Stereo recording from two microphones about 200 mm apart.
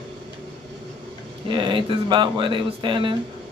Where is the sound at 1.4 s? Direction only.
25° right (ahead or behind).